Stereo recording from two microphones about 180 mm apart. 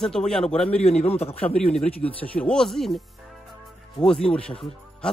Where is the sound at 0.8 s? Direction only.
35° left (ahead or behind).